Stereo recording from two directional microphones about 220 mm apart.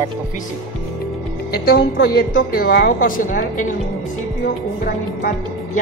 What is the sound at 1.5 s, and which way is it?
A woman's voice, 45° left (ahead or behind).